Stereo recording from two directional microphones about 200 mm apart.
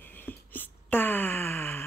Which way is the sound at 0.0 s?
10° left (ahead or behind).